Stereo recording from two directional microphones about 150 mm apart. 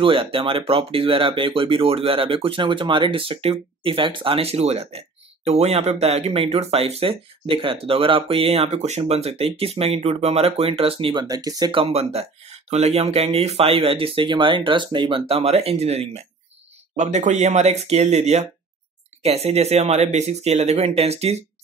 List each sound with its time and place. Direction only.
0.0 s speech: 35° right (ahead or behind)
11.2 s speech: 25° right (ahead or behind)
11.7 s speech: 40° right (ahead or behind)